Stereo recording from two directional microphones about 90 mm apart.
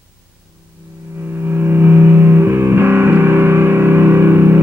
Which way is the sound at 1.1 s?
25° right (ahead or behind).